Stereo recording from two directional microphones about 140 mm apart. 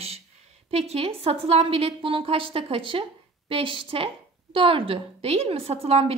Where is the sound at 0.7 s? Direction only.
45° right (ahead or behind).